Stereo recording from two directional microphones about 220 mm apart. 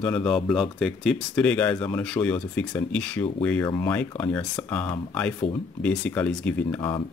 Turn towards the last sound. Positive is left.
turn(degrees=10)  # may be behind; listen again after turning